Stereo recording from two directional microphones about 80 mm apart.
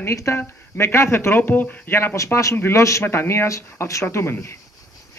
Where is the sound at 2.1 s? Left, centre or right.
Left.